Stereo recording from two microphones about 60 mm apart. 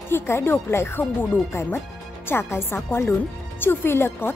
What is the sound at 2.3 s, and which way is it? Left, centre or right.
Speech, left.